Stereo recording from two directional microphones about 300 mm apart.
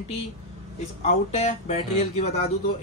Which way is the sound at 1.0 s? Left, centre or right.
Left.